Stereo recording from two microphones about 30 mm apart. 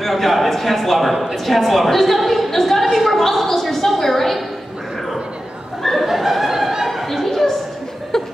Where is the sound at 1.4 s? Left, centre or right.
Centre.